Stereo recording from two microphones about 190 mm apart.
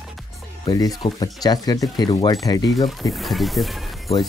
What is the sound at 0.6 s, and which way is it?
Speech, 20° left (ahead or behind).